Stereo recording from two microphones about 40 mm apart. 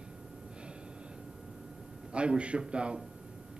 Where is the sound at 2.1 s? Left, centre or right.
Right.